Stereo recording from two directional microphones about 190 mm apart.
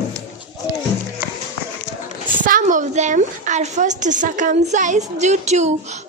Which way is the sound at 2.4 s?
45° right (ahead or behind).